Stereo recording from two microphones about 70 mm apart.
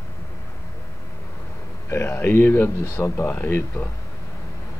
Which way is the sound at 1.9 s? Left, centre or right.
Left.